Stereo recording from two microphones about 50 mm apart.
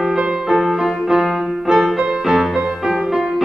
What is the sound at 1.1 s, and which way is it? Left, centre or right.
Music, centre.